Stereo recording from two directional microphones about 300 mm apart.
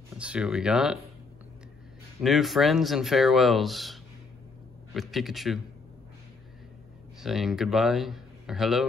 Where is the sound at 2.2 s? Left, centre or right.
Centre.